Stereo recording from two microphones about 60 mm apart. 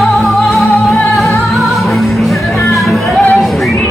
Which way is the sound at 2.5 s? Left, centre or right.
Left.